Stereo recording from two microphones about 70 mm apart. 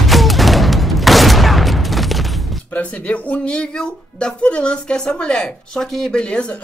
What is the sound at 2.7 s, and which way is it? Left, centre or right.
Speech, centre.